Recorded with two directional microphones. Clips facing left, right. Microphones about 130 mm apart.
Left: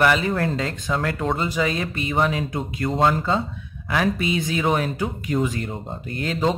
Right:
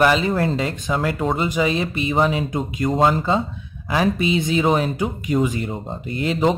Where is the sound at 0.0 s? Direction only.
20° right (ahead or behind).